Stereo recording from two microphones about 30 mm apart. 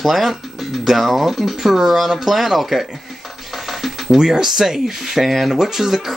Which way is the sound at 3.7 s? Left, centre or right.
Centre.